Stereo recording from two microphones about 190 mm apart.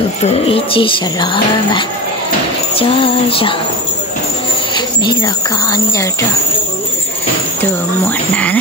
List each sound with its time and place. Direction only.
0.2 s speech: 30° left (ahead or behind)
4.7 s speech: 20° left (ahead or behind)
8.0 s speech: 10° left (ahead or behind)